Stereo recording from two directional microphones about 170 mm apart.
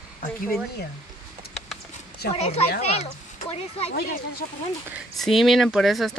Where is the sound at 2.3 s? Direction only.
35° left (ahead or behind).